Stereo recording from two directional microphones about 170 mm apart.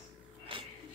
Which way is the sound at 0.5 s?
30° right (ahead or behind).